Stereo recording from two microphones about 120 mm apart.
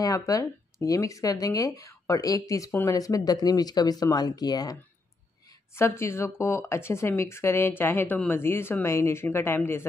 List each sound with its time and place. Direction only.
0.0 s speech: 30° left (ahead or behind)
5.8 s speech: 20° left (ahead or behind)